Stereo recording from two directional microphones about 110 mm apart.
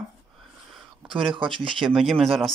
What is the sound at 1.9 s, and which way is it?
Speech, centre (ahead or behind).